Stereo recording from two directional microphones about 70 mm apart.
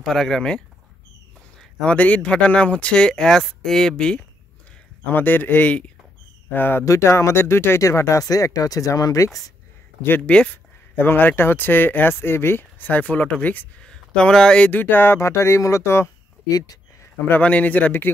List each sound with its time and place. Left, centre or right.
0.0 s speech: centre
1.8 s speech: centre
5.1 s speech: left
6.8 s speech: left
10.2 s speech: centre
11.0 s speech: left
13.7 s speech: centre
14.7 s speech: left
15.1 s speech: left
16.4 s speech: left
17.3 s speech: left